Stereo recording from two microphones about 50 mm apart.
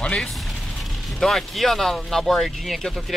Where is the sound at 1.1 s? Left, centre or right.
Centre.